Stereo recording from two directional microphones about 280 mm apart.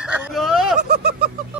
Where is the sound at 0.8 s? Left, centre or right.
Right.